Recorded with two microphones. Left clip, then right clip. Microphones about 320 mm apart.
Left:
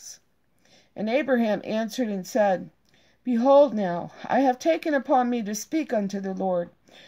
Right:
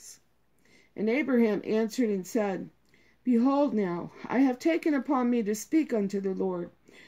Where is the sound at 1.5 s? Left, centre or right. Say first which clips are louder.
Left 2 dB; left.